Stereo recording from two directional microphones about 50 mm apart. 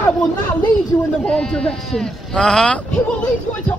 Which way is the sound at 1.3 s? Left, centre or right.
Centre.